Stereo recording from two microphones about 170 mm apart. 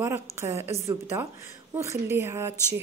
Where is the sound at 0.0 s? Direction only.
15° right (ahead or behind).